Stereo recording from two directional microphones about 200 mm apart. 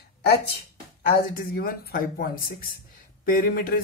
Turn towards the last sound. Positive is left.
turn(degrees=45)  # may be behind; listen again after turning